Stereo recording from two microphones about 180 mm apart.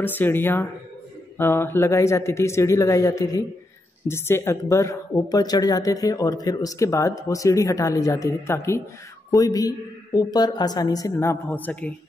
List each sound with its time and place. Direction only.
0.0 s a woman's voice: 10° left (ahead or behind)